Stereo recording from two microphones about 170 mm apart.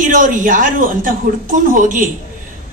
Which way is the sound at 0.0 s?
50° right (ahead or behind).